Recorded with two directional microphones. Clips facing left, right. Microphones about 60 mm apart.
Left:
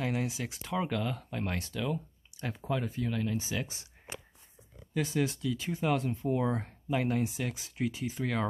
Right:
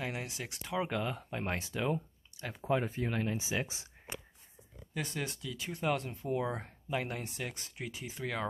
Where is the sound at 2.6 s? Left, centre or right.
Right.